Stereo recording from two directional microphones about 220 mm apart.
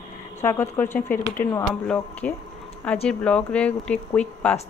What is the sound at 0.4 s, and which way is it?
Speech, 10° left (ahead or behind).